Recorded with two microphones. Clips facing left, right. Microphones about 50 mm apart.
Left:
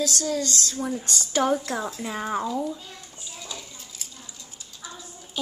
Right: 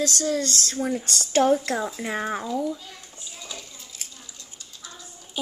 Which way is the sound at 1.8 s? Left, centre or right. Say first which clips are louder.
Right 2 dB; centre.